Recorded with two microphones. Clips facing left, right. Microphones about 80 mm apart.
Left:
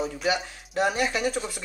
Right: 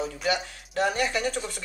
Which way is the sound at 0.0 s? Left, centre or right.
Centre.